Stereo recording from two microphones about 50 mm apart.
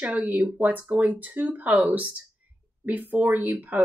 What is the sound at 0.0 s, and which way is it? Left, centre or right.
A woman's voice, right.